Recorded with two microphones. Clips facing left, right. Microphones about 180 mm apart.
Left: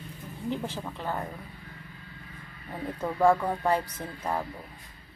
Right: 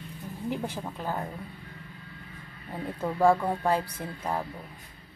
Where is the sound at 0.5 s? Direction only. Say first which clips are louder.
Even; 10° right (ahead or behind).